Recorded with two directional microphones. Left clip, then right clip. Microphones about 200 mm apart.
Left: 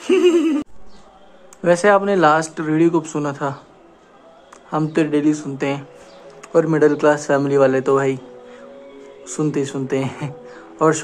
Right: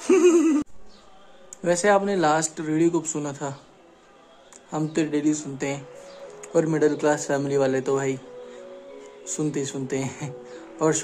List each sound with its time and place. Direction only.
0.0 s music: 25° right (ahead or behind)
1.6 s speech: 10° right (ahead or behind)
4.6 s speech: 10° right (ahead or behind)
9.2 s speech: 10° right (ahead or behind)